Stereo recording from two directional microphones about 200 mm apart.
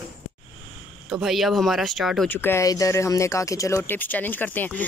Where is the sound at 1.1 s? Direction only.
Centre (ahead or behind).